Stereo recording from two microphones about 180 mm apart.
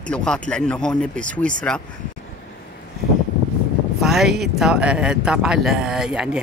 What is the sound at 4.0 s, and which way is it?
Speech, centre (ahead or behind).